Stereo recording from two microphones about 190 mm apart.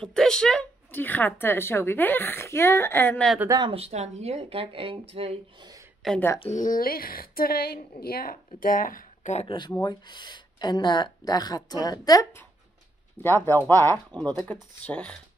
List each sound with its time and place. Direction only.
0.0 s speech: 5° left (ahead or behind)
3.3 s speech: 20° right (ahead or behind)
3.7 s speech: 35° right (ahead or behind)
6.0 s speech: 10° left (ahead or behind)
6.3 s speech: 20° left (ahead or behind)
6.6 s a woman's voice: 45° left (ahead or behind); by 15.1 s 5° left (ahead or behind)